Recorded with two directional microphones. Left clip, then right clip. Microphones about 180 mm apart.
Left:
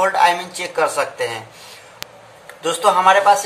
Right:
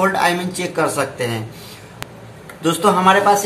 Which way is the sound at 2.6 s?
5° left (ahead or behind).